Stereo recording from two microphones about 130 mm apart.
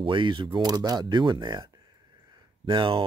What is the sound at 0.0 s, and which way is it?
Speech, 40° right (ahead or behind).